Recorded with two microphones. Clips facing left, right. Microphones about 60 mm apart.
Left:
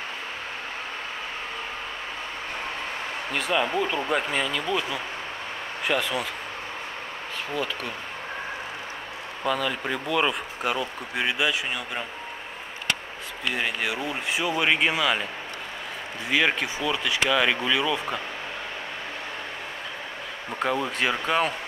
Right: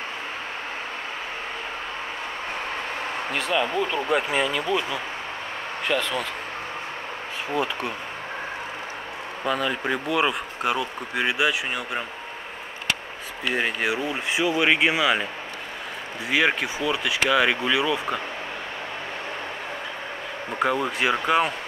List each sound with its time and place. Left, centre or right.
3.3 s speech: centre
7.5 s speech: centre
9.4 s speech: centre
13.5 s speech: centre
16.3 s speech: centre
20.5 s speech: centre